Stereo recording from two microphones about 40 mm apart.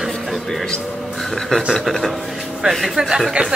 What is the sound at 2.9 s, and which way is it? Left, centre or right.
Speech, centre.